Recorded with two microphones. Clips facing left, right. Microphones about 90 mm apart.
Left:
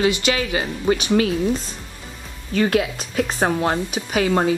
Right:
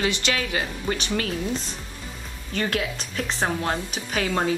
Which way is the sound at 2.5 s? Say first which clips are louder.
Left 7 dB; 15° left (ahead or behind).